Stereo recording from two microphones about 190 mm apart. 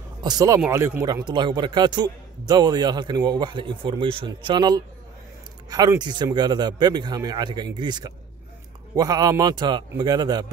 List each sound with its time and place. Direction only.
0.2 s a man's voice: 20° right (ahead or behind)